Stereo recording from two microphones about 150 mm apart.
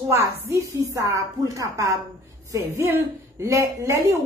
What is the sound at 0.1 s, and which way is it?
A woman's voice, 20° right (ahead or behind).